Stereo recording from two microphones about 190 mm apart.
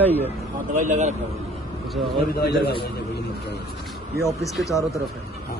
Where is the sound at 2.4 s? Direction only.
60° left (ahead or behind).